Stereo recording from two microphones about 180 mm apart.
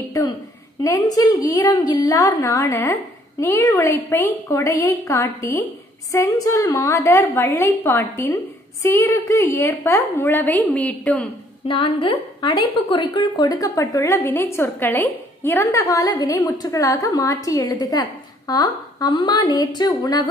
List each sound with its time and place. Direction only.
0.8 s a woman's voice: 20° left (ahead or behind)
11.6 s a woman's voice: 30° left (ahead or behind)